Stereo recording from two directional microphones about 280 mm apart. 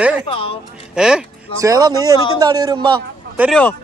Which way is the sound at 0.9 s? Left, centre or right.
Centre.